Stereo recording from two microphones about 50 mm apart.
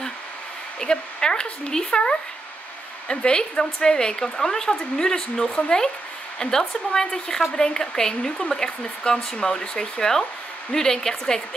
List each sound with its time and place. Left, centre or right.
0.7 s speech: centre